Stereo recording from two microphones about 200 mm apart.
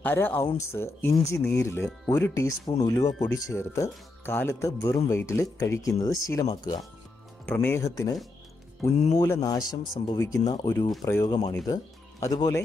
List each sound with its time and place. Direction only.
0.0 s speech: 10° left (ahead or behind)
7.4 s speech: 10° left (ahead or behind)